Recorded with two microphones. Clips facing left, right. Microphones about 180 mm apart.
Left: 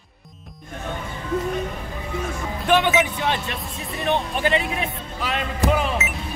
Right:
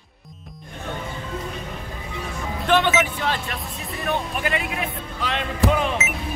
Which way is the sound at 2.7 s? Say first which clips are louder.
Left 1 dB; 15° left (ahead or behind).